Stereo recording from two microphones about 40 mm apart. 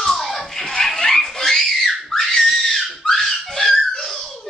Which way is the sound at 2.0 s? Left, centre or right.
Centre.